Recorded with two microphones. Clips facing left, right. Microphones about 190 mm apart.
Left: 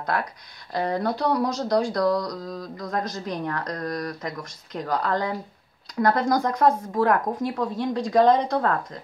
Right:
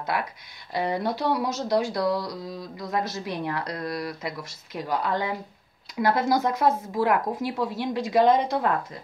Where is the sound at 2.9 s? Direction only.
5° right (ahead or behind).